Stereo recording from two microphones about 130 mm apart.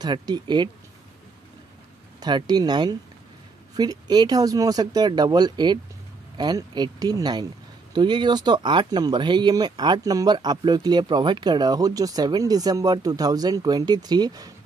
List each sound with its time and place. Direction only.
0.0 s speech: 35° right (ahead or behind)
2.1 s speech: 30° right (ahead or behind)